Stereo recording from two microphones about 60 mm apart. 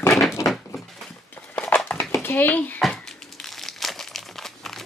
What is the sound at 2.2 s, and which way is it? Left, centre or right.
Speech, left.